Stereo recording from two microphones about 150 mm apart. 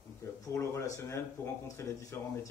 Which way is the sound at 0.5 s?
20° left (ahead or behind).